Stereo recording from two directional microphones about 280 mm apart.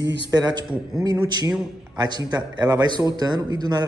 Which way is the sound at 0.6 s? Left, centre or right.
Centre.